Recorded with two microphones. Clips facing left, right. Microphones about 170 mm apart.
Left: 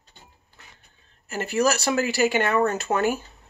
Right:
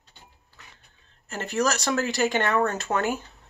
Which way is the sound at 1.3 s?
10° left (ahead or behind).